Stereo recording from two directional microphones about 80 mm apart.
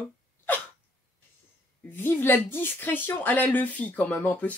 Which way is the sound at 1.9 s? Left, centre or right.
Left.